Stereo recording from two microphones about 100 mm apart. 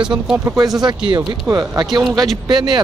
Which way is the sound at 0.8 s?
50° right (ahead or behind).